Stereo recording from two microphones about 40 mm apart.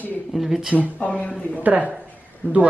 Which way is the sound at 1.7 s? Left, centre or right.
Right.